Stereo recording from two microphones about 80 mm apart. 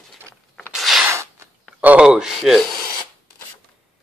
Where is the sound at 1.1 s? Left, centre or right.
Right.